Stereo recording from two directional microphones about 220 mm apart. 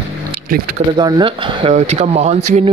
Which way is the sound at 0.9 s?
20° right (ahead or behind).